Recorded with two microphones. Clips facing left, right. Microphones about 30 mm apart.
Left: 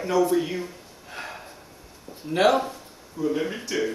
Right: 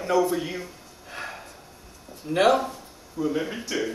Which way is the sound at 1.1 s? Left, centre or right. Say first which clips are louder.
Right 1 dB; centre.